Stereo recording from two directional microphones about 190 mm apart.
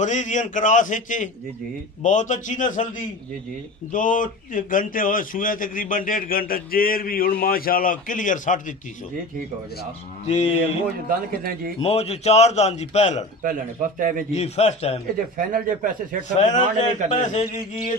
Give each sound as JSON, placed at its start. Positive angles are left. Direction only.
{"t": 0.0, "sound": "a man's voice", "side_deg": 40}
{"t": 3.9, "sound": "a man's voice", "side_deg": 45}
{"t": 10.2, "sound": "a man's voice", "side_deg": 35}
{"t": 11.1, "sound": "speech", "side_deg": -50}
{"t": 11.8, "sound": "a man's voice", "side_deg": 30}
{"t": 13.4, "sound": "speech", "side_deg": -45}
{"t": 14.3, "sound": "a man's voice", "side_deg": 35}
{"t": 15.3, "sound": "speech", "side_deg": -45}
{"t": 16.2, "sound": "a man's voice", "side_deg": 40}